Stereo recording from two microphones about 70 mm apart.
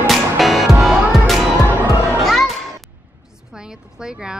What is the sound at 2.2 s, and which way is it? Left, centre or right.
Children playing, centre.